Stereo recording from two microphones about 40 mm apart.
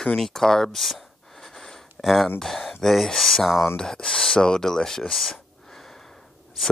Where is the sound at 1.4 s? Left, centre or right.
Centre.